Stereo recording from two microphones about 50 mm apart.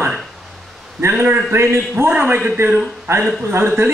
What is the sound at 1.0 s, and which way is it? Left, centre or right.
A man's voice, right.